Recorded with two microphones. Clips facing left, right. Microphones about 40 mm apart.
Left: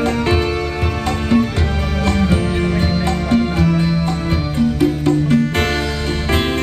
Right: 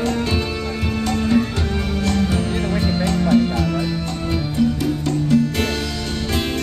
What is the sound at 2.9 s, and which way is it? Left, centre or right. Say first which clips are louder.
Music: even; centre.